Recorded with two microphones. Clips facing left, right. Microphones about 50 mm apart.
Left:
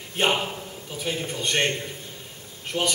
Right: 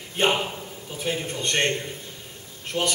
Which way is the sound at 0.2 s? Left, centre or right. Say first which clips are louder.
Right 1 dB; centre.